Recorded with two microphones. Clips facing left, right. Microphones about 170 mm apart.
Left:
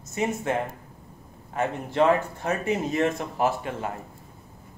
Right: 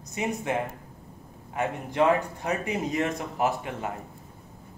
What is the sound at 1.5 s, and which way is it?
Speech, 15° right (ahead or behind).